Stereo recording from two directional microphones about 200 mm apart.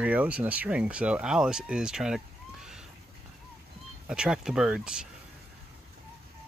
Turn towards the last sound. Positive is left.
turn(degrees=-5)  # may be behind; listen again after turning